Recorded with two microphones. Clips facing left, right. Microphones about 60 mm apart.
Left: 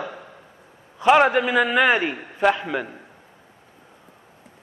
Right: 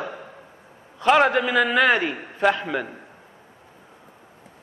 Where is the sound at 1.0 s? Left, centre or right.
Centre.